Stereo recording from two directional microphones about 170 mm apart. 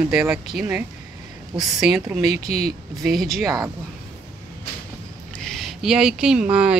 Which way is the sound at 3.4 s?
20° right (ahead or behind).